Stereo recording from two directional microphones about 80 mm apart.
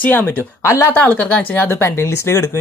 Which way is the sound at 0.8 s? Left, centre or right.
Left.